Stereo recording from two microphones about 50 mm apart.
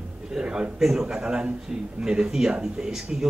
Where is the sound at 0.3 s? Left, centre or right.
Centre.